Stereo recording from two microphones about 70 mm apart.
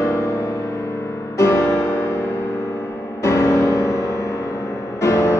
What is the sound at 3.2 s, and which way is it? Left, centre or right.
Music, left.